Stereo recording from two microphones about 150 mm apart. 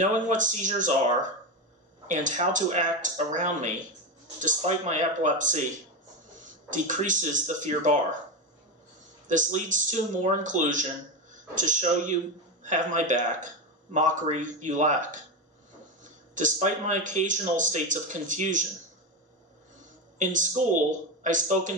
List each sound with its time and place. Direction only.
0.0 s speech: 55° right (ahead or behind)
9.3 s speech: 55° right (ahead or behind)
20.2 s speech: 55° right (ahead or behind)